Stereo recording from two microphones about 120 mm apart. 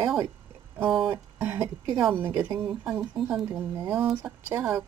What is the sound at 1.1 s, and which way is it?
Speech, 15° right (ahead or behind).